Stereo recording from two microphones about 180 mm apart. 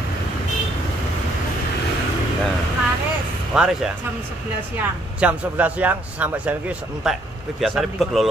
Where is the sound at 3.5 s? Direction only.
5° right (ahead or behind).